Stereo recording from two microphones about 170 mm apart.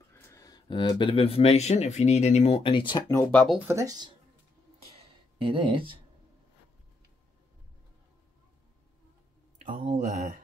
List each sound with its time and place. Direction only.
0.1 s speech: 20° left (ahead or behind)
3.2 s speech: 5° left (ahead or behind)
3.5 s speech: 15° right (ahead or behind)
5.4 s speech: 30° right (ahead or behind)
9.6 s a sound: 50° right (ahead or behind)
9.9 s speech: 45° right (ahead or behind)